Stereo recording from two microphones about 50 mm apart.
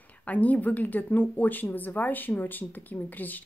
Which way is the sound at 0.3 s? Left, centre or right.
Left.